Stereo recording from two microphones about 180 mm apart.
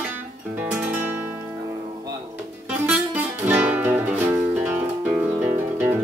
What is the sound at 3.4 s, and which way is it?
Music, 10° right (ahead or behind).